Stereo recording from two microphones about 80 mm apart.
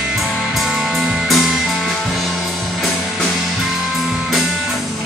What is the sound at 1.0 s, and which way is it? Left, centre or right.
Music, centre.